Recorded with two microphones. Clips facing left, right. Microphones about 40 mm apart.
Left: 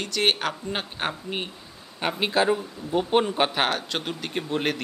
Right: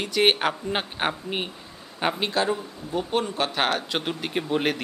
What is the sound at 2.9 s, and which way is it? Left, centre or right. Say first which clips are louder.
Speech: left 4 dB; left.